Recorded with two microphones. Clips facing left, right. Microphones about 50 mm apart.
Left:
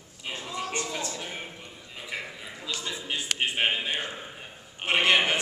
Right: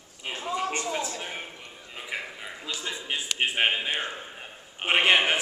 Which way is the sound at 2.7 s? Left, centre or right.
Left.